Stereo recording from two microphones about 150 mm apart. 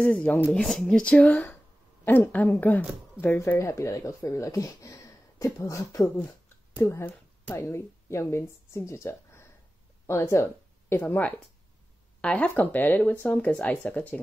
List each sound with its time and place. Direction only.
0.0 s a woman's voice: 10° left (ahead or behind)